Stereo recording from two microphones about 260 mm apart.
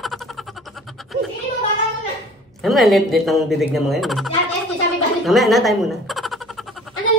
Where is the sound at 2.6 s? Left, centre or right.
Centre.